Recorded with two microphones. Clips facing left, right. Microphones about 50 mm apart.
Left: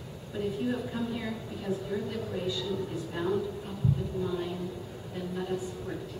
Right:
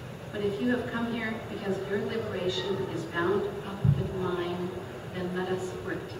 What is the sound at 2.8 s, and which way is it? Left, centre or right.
Speech, right.